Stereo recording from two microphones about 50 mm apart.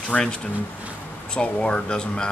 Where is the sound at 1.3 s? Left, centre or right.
Centre.